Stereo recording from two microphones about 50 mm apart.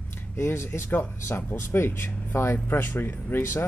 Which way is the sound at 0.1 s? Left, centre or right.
Left.